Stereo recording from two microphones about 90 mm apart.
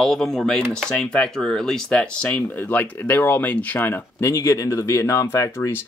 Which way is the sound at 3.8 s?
30° left (ahead or behind).